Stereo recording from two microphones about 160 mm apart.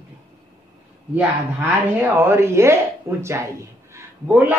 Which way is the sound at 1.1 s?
10° right (ahead or behind).